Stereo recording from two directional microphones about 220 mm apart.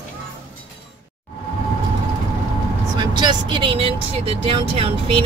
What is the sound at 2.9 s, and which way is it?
Speech, 20° right (ahead or behind).